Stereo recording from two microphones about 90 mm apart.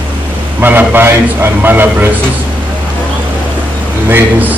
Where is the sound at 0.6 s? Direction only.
20° right (ahead or behind).